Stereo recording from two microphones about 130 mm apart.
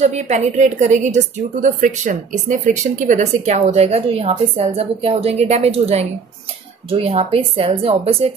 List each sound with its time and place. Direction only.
0.0 s a woman's voice: 60° right (ahead or behind)